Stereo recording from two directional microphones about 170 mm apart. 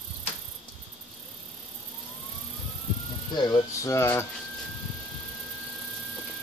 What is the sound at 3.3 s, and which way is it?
Speech, 25° left (ahead or behind).